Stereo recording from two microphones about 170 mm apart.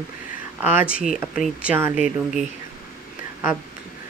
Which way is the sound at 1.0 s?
Centre (ahead or behind).